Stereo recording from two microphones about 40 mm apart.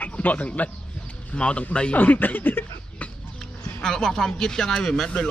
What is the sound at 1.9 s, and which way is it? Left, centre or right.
Speech, left.